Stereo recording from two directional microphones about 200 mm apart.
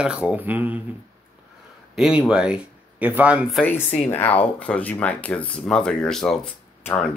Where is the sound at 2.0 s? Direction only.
5° right (ahead or behind).